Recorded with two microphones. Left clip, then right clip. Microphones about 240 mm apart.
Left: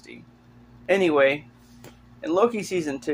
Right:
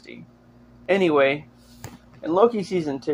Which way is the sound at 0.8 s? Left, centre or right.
Right.